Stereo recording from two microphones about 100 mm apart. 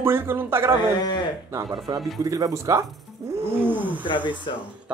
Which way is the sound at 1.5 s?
35° right (ahead or behind).